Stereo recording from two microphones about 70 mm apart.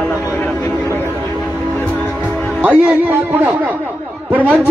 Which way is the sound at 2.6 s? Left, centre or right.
Right.